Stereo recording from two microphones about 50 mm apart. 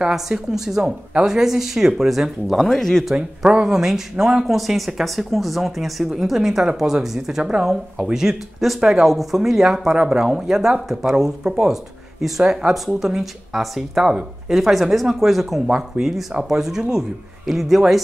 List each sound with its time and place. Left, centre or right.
0.1 s speech: centre
3.2 s speech: right
3.6 s speech: centre